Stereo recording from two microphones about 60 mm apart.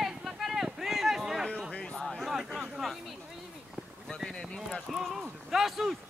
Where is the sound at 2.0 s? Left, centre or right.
Centre.